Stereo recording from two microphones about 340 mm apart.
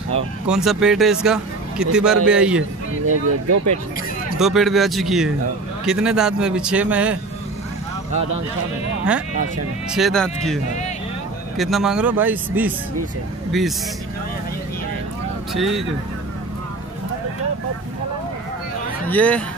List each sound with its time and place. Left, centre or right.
0.5 s speech: centre
3.1 s speech: right
4.4 s speech: centre
9.8 s speech: centre
15.5 s speech: centre
19.0 s speech: centre